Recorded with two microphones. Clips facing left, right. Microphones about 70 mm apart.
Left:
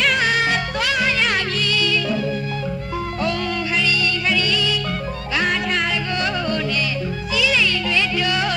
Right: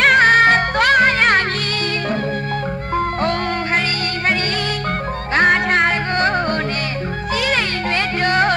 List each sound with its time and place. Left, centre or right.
0.0 s music: right
3.2 s music: right